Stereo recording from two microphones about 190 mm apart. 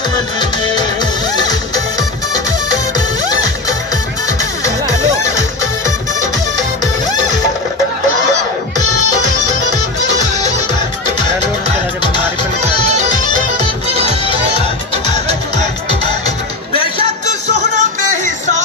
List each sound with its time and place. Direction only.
1.3 s music: 20° left (ahead or behind)
12.9 s music: 35° right (ahead or behind)
17.3 s music: 40° right (ahead or behind)